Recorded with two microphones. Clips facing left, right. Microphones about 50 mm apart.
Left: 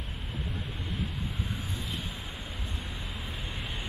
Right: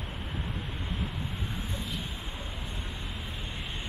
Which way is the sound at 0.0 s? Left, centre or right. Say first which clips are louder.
Right 1 dB; centre.